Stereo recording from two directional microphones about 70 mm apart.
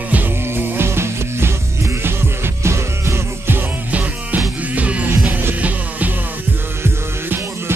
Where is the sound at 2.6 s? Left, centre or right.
Right.